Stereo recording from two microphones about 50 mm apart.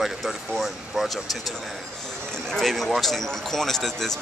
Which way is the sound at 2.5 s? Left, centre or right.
Centre.